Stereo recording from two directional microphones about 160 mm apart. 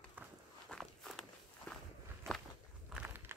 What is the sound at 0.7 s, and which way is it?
Walk, centre (ahead or behind).